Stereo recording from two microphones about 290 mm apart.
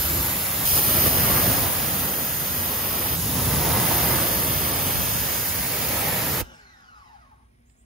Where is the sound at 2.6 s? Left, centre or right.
Centre.